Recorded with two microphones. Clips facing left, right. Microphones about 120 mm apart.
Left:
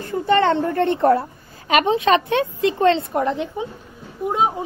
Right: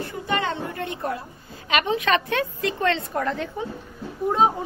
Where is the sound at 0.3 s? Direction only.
60° left (ahead or behind).